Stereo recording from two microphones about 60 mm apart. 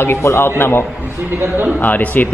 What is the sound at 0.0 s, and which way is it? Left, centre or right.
A man's voice, left.